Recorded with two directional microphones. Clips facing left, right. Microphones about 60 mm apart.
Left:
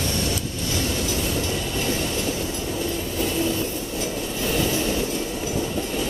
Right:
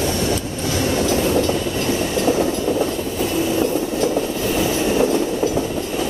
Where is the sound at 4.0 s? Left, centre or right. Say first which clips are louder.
Right 9 dB; right.